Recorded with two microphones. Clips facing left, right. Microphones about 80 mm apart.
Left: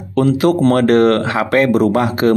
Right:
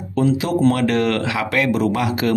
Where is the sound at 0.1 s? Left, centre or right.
Left.